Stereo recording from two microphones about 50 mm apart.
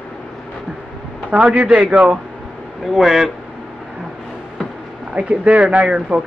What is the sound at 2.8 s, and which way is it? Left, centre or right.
Speech, centre.